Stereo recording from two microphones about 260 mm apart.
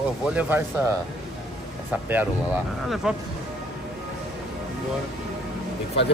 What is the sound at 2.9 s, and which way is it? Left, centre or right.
Speech, centre.